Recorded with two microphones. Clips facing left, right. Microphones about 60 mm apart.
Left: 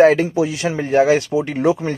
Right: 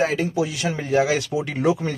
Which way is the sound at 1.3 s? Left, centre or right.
Left.